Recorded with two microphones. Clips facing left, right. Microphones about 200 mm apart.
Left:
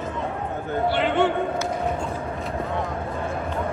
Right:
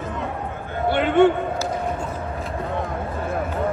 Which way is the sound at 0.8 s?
55° right (ahead or behind).